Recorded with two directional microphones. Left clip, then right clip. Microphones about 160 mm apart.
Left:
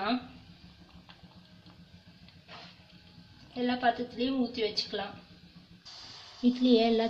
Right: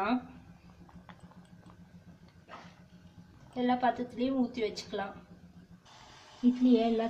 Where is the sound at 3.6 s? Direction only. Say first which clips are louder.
Left 1 dB; 25° right (ahead or behind).